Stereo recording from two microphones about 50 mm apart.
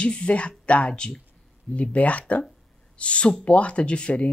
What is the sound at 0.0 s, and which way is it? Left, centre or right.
Speech, centre.